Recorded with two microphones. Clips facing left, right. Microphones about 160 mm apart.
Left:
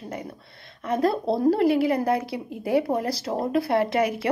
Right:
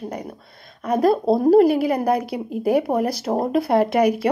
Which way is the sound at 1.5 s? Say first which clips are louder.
Right 7 dB; 20° right (ahead or behind).